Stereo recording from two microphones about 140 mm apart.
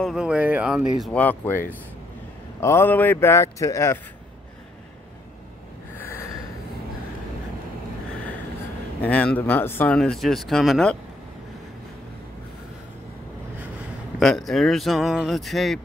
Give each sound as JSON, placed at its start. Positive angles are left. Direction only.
{"t": 0.0, "sound": "speech", "side_deg": -5}
{"t": 1.0, "sound": "speech", "side_deg": 10}
{"t": 2.6, "sound": "speech", "side_deg": 15}
{"t": 5.9, "sound": "snort", "side_deg": 20}
{"t": 9.0, "sound": "speech", "side_deg": 10}
{"t": 14.2, "sound": "speech", "side_deg": 0}